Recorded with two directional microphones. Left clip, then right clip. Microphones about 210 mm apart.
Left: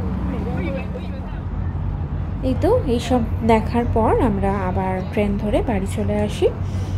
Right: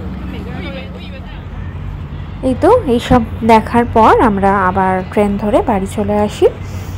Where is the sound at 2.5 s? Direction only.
20° right (ahead or behind).